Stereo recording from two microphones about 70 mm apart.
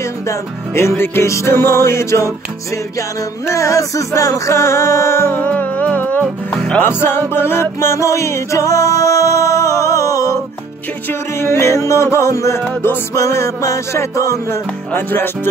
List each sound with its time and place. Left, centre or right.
0.3 s music: left
5.5 s music: left
6.5 s music: centre
6.8 s music: left
11.1 s music: left
14.9 s music: left